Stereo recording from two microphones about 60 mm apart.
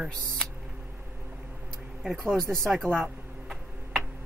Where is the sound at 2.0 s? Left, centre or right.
Centre.